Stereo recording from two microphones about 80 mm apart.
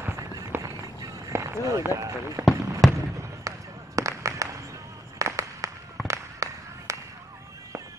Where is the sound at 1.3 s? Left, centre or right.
Right.